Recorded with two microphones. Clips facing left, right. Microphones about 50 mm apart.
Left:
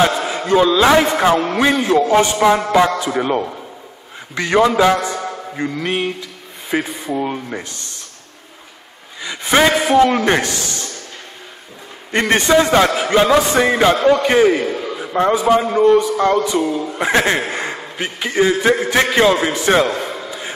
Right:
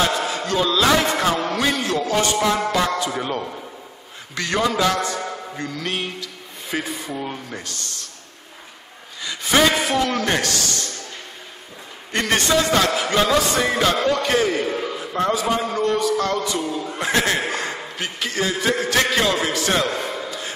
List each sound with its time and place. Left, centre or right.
0.0 s a man's voice: centre
9.2 s a man's voice: left
12.1 s a man's voice: left